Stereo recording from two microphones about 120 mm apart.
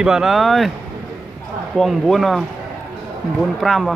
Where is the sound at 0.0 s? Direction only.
5° right (ahead or behind).